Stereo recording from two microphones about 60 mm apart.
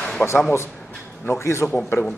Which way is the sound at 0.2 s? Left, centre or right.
Left.